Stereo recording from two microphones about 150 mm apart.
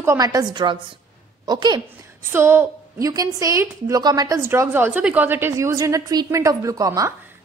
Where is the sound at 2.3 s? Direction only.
15° right (ahead or behind).